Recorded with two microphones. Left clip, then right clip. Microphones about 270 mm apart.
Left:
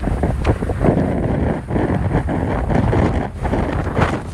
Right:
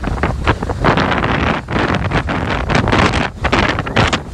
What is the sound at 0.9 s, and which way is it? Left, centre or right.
Wind noise, left.